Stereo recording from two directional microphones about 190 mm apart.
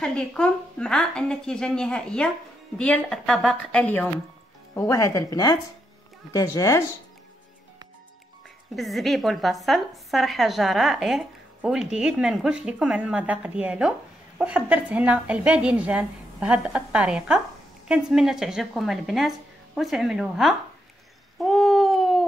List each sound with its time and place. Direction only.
0.0 s a woman's voice: 5° left (ahead or behind)
8.7 s a woman's voice: centre (ahead or behind)
21.5 s a sound: centre (ahead or behind)